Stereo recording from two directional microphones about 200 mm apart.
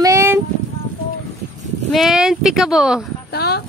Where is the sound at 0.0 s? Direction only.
15° right (ahead or behind).